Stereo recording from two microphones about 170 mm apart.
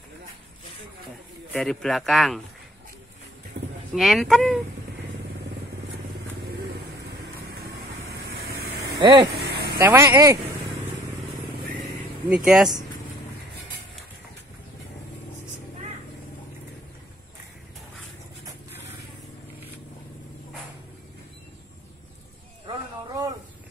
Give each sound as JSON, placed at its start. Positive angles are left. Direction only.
{"t": 1.5, "sound": "speech", "side_deg": 5}
{"t": 3.9, "sound": "speech", "side_deg": 0}
{"t": 8.5, "sound": "vehicle", "side_deg": -20}
{"t": 9.4, "sound": "vehicle", "side_deg": -75}
{"t": 9.8, "sound": "speech", "side_deg": -15}
{"t": 12.3, "sound": "speech", "side_deg": -5}
{"t": 22.7, "sound": "a sound", "side_deg": -20}